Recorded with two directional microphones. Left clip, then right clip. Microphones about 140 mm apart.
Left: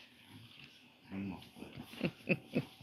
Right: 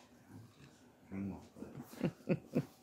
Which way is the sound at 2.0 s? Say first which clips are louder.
Left 2 dB; 20° right (ahead or behind).